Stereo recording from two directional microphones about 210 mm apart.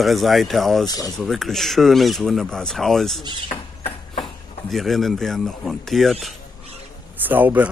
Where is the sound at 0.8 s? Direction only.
15° left (ahead or behind).